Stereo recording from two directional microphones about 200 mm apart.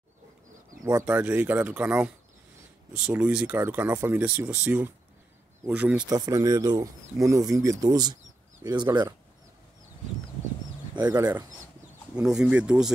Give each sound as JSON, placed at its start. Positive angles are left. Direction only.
{"t": 0.8, "sound": "speech", "side_deg": -10}
{"t": 6.0, "sound": "speech", "side_deg": -20}
{"t": 11.0, "sound": "speech", "side_deg": -15}